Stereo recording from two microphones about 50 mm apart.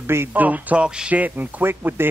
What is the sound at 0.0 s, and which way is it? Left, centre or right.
Speech, right.